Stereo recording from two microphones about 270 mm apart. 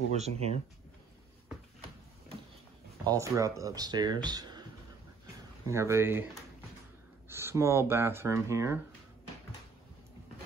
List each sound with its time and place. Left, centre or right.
0.1 s speech: right
3.1 s speech: centre
5.7 s speech: centre
7.2 s speech: centre